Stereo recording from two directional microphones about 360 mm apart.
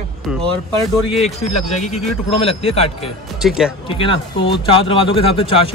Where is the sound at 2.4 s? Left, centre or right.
Centre.